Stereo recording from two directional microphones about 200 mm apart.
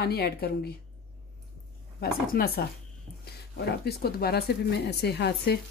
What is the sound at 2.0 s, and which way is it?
Speech, 50° left (ahead or behind).